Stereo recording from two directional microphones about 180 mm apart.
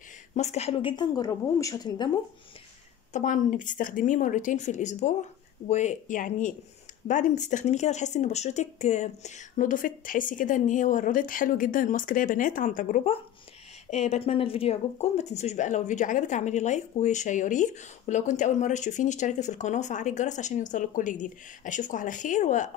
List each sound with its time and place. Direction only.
0.3 s a woman's voice: 40° left (ahead or behind)
3.1 s speech: 45° left (ahead or behind)